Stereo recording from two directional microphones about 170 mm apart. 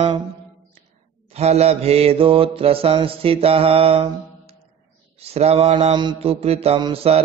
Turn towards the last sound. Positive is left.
turn(degrees=-35)  # may be behind; listen again after turning